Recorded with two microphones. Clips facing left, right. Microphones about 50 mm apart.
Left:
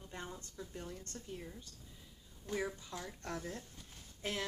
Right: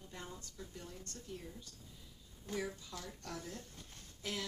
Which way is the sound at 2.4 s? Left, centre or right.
Centre.